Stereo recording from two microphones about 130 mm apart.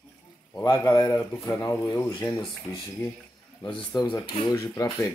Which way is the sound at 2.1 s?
40° left (ahead or behind).